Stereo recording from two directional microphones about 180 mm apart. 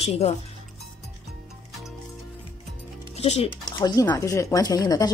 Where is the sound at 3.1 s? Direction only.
35° left (ahead or behind).